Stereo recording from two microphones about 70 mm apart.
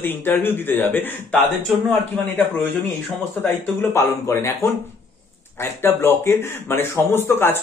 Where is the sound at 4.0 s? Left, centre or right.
Left.